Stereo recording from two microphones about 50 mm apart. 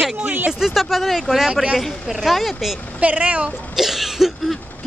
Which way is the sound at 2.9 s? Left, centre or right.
Right.